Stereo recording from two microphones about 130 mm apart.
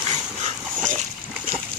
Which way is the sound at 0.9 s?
75° right (ahead or behind).